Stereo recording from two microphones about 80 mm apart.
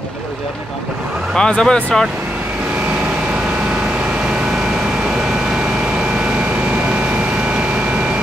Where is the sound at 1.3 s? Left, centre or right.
Centre.